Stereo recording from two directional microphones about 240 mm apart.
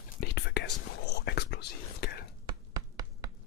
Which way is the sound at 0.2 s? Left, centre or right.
Left.